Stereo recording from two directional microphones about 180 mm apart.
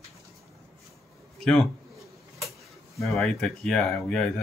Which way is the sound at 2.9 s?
Centre (ahead or behind).